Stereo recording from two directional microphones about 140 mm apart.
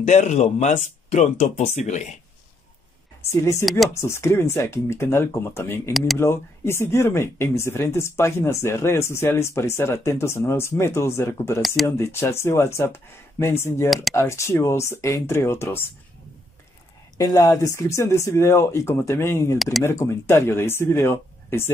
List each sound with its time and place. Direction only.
0.0 s speech: 55° left (ahead or behind)
3.3 s speech: 20° left (ahead or behind)
11.6 s speech: centre (ahead or behind)
12.0 s speech: 20° left (ahead or behind)
13.8 s speech: centre (ahead or behind)
14.1 s speech: 20° left (ahead or behind)
17.2 s speech: 25° left (ahead or behind)